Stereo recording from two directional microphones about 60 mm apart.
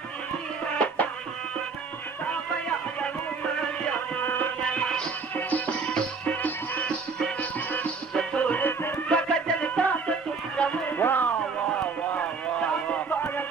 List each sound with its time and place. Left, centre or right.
0.7 s music: left
4.2 s music: left
4.6 s music: centre
5.3 s music: left
8.1 s music: centre
8.6 s music: left
9.1 s music: centre
10.9 s music: left